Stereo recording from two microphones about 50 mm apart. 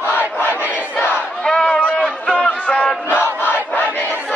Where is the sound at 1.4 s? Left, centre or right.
Centre.